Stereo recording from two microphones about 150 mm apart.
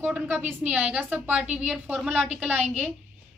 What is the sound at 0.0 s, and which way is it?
A woman's voice, 10° right (ahead or behind).